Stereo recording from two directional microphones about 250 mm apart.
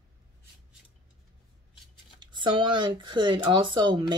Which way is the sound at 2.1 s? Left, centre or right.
Centre.